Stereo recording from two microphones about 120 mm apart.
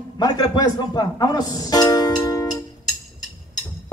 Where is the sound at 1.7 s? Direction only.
30° left (ahead or behind).